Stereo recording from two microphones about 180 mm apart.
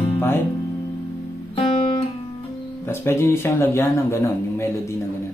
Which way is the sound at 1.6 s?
30° left (ahead or behind).